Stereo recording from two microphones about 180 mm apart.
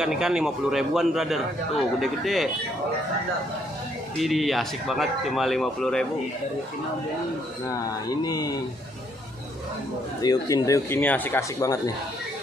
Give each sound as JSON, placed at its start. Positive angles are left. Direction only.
{"t": 0.0, "sound": "a man's voice", "side_deg": -5}
{"t": 4.2, "sound": "a man's voice", "side_deg": 0}
{"t": 7.6, "sound": "speech", "side_deg": 20}
{"t": 10.2, "sound": "speech", "side_deg": 20}